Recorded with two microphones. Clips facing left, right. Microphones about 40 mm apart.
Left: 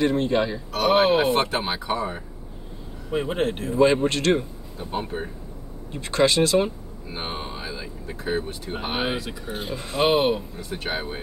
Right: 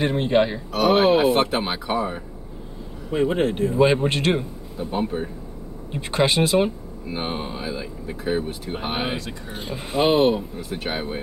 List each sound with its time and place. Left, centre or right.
0.0 s speech: right
0.7 s speech: centre
3.7 s speech: centre
4.9 s speech: centre
5.9 s speech: centre
7.1 s speech: centre